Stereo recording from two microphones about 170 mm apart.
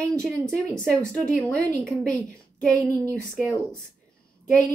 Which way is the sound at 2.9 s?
20° right (ahead or behind).